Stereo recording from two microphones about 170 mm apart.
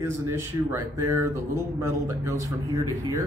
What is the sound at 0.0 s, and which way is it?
Speech, 15° right (ahead or behind).